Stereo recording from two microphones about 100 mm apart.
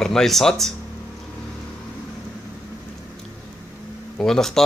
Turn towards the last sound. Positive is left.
turn(degrees=5)  # may be behind; listen again after turning